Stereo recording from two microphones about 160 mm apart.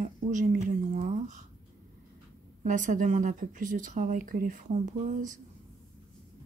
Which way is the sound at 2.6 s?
55° right (ahead or behind).